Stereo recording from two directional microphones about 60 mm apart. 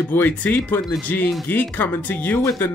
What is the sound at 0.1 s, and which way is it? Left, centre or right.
Speech, left.